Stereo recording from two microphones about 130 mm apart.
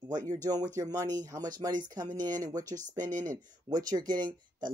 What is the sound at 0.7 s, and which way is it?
Speech, 30° right (ahead or behind).